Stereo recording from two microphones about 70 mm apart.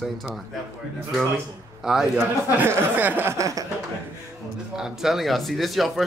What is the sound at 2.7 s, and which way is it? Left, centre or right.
Speech, right.